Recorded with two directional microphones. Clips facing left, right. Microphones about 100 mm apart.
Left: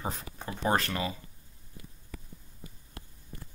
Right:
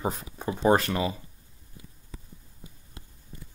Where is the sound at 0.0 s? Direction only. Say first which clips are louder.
Right 6 dB; 20° right (ahead or behind).